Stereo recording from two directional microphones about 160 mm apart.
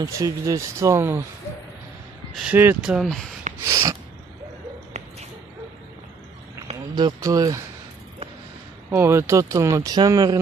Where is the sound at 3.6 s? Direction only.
20° right (ahead or behind).